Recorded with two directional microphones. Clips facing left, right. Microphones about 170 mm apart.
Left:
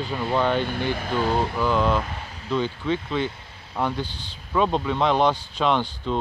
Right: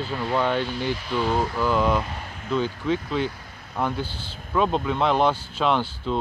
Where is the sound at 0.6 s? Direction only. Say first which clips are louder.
Left 1 dB; 55° left (ahead or behind).